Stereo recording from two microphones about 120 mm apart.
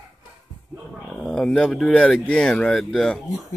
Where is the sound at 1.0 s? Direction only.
5° left (ahead or behind).